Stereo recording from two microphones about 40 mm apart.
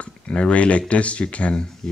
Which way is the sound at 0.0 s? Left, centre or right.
Left.